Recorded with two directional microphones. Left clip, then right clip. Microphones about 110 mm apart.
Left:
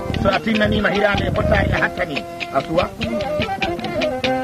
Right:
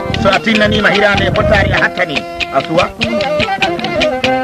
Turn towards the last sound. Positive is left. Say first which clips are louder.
# right 7 dB
turn(degrees=-25)  # may be behind; listen again after turning